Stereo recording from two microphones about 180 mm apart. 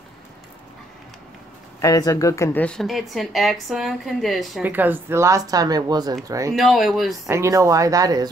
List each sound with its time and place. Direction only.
1.8 s a woman's voice: 20° left (ahead or behind); by 6.5 s 20° right (ahead or behind)
6.5 s a woman's voice: centre (ahead or behind)
7.2 s speech: 15° right (ahead or behind)